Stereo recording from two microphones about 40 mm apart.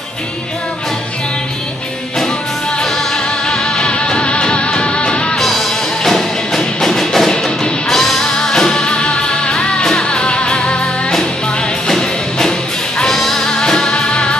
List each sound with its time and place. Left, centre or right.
3.4 s music: centre
5.3 s music: centre
13.9 s music: left